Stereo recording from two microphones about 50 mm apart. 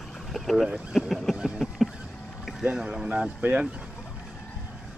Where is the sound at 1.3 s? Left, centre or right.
Centre.